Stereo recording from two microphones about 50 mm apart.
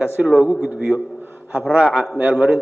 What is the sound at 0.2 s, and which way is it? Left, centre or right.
Speech, right.